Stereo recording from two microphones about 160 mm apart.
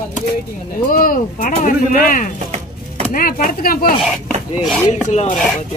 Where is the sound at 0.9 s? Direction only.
65° left (ahead or behind).